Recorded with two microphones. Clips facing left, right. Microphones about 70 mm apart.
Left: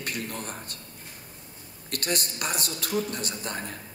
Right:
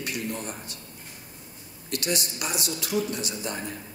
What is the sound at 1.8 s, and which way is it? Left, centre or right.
A man's voice, left.